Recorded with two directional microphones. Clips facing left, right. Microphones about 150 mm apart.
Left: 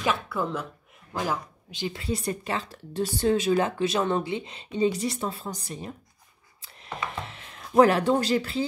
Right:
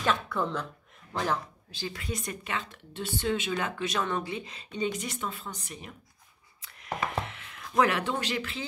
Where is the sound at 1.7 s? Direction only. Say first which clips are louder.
Left 6 dB; 25° left (ahead or behind).